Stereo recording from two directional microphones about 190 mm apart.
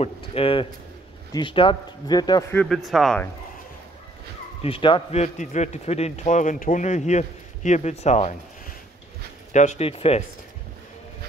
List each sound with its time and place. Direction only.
0.0 s speech: 30° left (ahead or behind)
2.5 s speech: 5° left (ahead or behind)
4.6 s a man's voice: 30° left (ahead or behind)
9.5 s a man's voice: 40° left (ahead or behind)